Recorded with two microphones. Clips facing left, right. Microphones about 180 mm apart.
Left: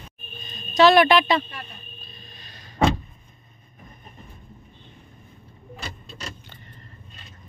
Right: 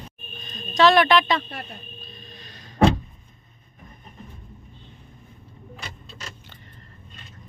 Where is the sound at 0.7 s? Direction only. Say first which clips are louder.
Left 2 dB; 5° left (ahead or behind).